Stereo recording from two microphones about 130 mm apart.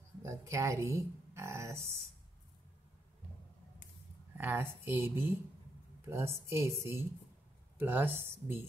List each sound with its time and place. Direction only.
0.2 s speech: 20° right (ahead or behind)
4.4 s a woman's voice: 15° right (ahead or behind)